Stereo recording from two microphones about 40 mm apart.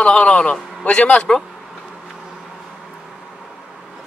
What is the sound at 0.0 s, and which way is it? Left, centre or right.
A man's voice, left.